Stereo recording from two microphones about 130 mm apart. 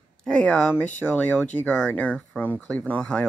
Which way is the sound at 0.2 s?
5° left (ahead or behind).